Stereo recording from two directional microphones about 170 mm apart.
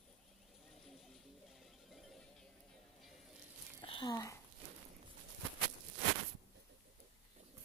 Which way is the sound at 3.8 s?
30° left (ahead or behind).